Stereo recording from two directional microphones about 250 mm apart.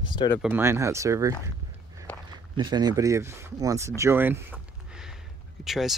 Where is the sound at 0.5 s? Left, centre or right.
Centre.